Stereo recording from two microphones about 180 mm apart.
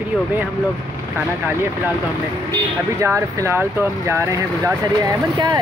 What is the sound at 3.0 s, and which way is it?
Speech, 15° right (ahead or behind).